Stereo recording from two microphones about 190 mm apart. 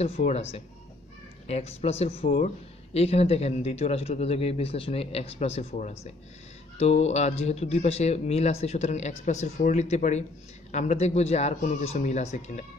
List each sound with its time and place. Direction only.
0.0 s speech: 35° left (ahead or behind)